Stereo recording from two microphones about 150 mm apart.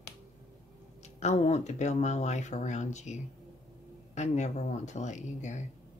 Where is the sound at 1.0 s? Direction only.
45° left (ahead or behind).